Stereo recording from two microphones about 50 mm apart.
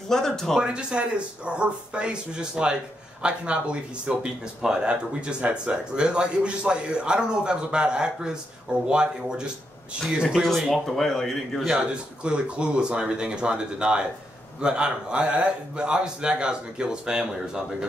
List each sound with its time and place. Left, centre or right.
0.1 s speech: centre
0.6 s speech: centre
10.7 s speech: centre
11.9 s speech: centre